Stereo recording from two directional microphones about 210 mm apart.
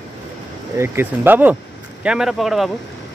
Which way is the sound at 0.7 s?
10° right (ahead or behind).